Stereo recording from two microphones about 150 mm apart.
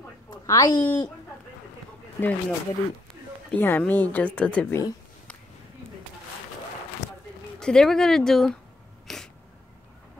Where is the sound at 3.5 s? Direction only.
10° left (ahead or behind).